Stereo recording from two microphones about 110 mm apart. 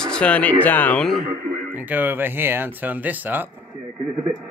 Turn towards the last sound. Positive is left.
turn(degrees=-15)  # may be behind; listen again after turning